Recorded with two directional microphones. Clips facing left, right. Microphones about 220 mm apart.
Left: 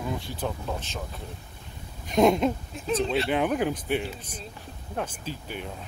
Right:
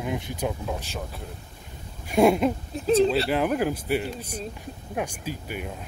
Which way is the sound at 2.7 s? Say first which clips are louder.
Right 7 dB; 30° right (ahead or behind).